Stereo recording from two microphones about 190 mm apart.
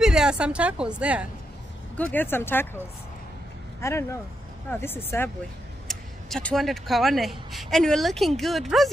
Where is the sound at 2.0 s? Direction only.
10° left (ahead or behind).